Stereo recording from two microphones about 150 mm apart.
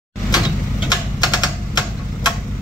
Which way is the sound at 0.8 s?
25° left (ahead or behind).